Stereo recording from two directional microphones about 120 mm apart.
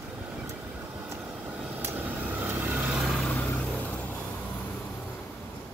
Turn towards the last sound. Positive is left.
turn(degrees=10)  # may be behind; listen again after turning